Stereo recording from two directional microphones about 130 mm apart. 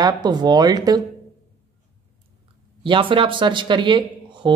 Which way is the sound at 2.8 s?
40° right (ahead or behind).